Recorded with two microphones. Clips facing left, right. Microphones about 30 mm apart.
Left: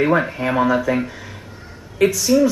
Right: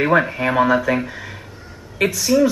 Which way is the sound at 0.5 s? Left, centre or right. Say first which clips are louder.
Right 1 dB; centre.